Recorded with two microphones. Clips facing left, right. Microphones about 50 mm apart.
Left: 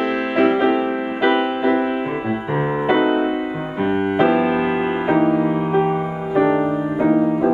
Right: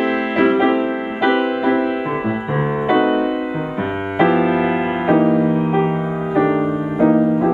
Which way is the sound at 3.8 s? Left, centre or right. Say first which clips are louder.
Left 1 dB; centre.